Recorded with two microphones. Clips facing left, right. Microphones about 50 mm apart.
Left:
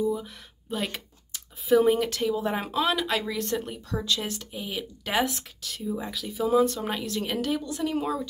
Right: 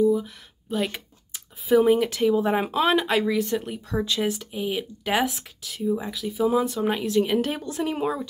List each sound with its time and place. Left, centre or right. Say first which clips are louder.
0.0 s a sound: right 7 dB; centre
1.7 s speech: right 2 dB; centre; by 3.1 s right
3.1 s speech: right 5 dB; centre
3.9 s speech: right 3 dB; right
4.2 s speech: right 7 dB; centre
7.4 s speech: right 1 dB; right